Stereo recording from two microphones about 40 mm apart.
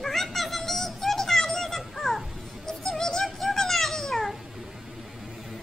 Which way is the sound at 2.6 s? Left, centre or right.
Centre.